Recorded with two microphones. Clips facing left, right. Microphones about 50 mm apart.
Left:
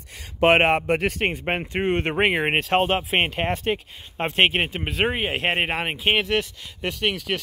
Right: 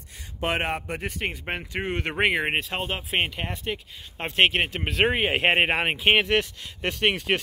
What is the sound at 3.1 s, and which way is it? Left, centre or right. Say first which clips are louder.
Speech: left 5 dB; left.